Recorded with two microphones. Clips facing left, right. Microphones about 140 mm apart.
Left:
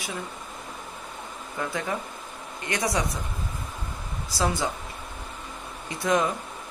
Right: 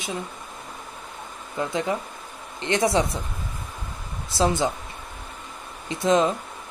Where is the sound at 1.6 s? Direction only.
20° right (ahead or behind).